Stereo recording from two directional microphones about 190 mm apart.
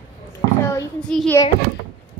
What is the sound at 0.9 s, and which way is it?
Speech, 5° left (ahead or behind).